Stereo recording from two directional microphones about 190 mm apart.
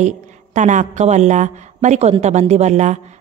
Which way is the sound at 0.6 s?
40° right (ahead or behind).